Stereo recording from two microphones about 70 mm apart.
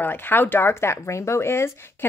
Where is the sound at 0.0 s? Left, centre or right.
Left.